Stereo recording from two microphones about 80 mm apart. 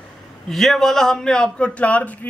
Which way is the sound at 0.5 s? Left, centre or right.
Centre.